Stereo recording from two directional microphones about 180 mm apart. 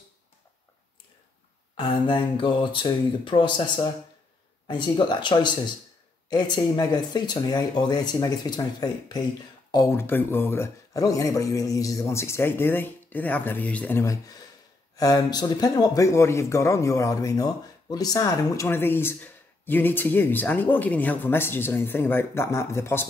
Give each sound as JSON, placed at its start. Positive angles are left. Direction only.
{"t": 1.8, "sound": "speech", "side_deg": 25}